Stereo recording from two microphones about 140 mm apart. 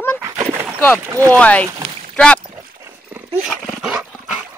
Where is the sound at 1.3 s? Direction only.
10° left (ahead or behind).